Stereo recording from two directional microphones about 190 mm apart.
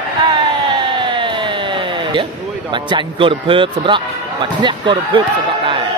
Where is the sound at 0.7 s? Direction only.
25° right (ahead or behind).